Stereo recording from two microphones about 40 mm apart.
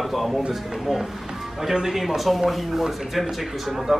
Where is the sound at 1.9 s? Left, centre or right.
Centre.